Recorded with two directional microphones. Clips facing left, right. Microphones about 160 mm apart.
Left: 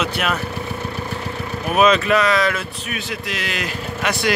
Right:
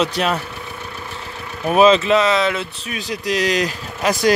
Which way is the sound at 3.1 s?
35° right (ahead or behind).